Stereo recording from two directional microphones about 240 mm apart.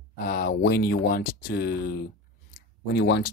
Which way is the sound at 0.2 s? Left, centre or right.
Left.